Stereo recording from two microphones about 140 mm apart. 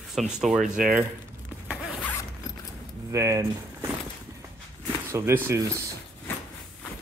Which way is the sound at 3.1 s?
20° right (ahead or behind).